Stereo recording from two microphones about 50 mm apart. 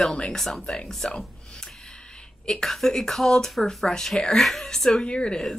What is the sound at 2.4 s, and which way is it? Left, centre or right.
Speech, centre.